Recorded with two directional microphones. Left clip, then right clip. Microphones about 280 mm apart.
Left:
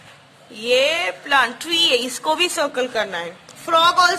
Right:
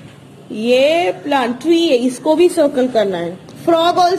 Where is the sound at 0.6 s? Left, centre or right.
Centre.